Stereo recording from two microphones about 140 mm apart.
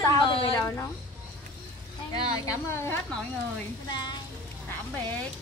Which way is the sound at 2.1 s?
30° left (ahead or behind).